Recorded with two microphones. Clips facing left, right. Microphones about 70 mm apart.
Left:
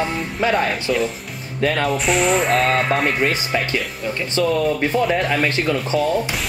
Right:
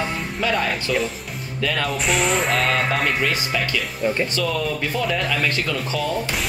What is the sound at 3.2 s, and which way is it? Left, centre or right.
Speech, left.